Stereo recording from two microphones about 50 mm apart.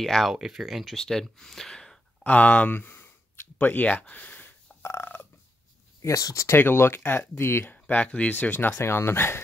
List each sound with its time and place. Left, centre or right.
0.0 s speech: centre
0.3 s speech: centre
0.9 s speech: centre
2.2 s speech: left
2.7 s sigh: left
3.6 s speech: left
5.9 s speech: left
6.5 s speech: left
7.3 s speech: left
7.6 s speech: left
8.7 s speech: left